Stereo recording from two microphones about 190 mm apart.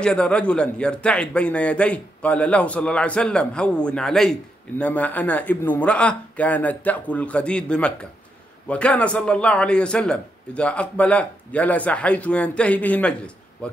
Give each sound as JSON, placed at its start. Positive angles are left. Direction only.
{"t": 0.0, "sound": "a man's voice", "side_deg": 5}